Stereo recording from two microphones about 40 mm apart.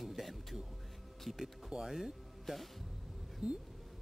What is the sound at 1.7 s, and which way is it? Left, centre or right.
Speech, right.